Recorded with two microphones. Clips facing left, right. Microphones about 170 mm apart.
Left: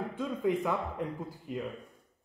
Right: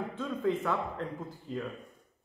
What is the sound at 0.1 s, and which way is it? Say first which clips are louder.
Speech: left 1 dB; 15° left (ahead or behind).